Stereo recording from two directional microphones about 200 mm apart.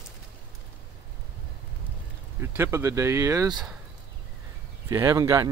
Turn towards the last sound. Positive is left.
turn(degrees=-15)  # may be behind; listen again after turning